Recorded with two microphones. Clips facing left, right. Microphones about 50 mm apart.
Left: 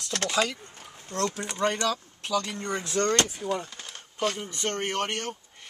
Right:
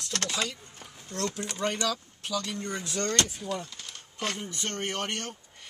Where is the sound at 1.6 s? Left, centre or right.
Left.